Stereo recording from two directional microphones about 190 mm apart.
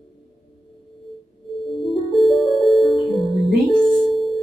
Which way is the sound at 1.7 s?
Centre (ahead or behind).